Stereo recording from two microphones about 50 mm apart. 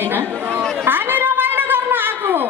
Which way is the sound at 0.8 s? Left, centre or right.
Right.